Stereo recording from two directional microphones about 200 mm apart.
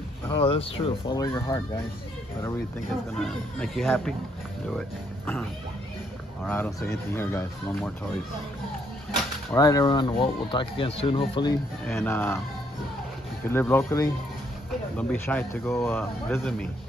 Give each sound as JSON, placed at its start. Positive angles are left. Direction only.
{"t": 0.3, "sound": "speech", "side_deg": 25}
{"t": 3.2, "sound": "speech", "side_deg": 5}
{"t": 6.4, "sound": "speech", "side_deg": 10}
{"t": 9.5, "sound": "speech", "side_deg": 15}
{"t": 11.8, "sound": "speech", "side_deg": 10}
{"t": 13.5, "sound": "speech", "side_deg": 10}